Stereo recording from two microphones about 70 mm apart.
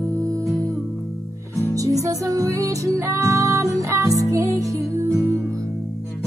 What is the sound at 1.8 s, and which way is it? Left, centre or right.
Music, right.